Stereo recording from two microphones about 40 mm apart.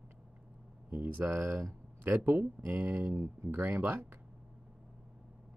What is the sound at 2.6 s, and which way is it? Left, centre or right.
Speech, right.